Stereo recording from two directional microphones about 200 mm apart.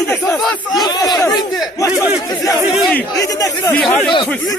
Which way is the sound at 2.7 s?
5° left (ahead or behind).